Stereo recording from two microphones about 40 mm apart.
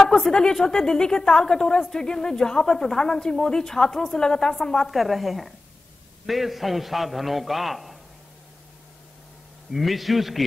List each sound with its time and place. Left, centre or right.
0.3 s a woman's voice: centre
9.7 s a man's voice: centre